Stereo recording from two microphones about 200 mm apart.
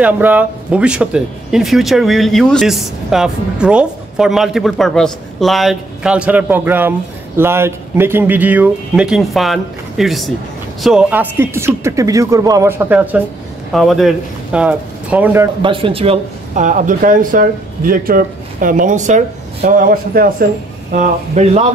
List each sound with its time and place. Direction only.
0.0 s speech: 10° right (ahead or behind)
15.6 s speech: 25° right (ahead or behind)